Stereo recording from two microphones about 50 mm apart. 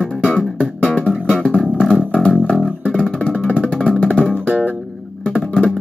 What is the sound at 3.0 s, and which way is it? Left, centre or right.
Music, left.